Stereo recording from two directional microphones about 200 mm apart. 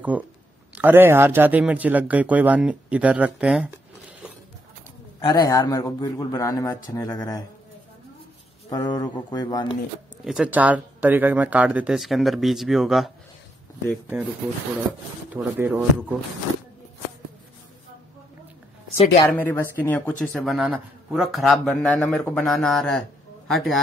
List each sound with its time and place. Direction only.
0.1 s speech: 5° right (ahead or behind)
5.2 s a man's voice: 15° left (ahead or behind)
8.6 s speech: 20° left (ahead or behind)
10.2 s speech: 5° right (ahead or behind)
15.3 s speech: 10° right (ahead or behind)
19.2 s speech: 10° left (ahead or behind)